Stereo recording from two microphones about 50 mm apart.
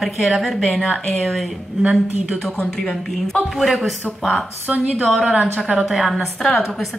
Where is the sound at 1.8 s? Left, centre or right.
Right.